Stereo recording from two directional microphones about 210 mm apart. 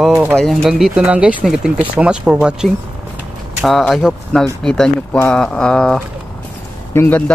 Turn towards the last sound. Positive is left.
turn(degrees=10)  # may be behind; listen again after turning